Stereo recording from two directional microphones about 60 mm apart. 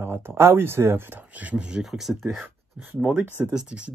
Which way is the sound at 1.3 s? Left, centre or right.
Right.